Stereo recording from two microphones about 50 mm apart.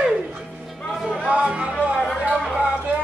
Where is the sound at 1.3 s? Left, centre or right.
Right.